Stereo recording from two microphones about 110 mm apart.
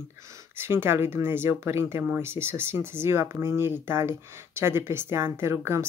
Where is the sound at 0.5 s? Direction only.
20° right (ahead or behind).